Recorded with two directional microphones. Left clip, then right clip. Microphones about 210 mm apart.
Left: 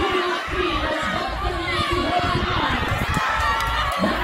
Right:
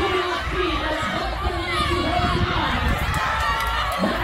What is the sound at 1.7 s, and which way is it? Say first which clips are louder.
Run: left 1 dB; 50° right (ahead or behind).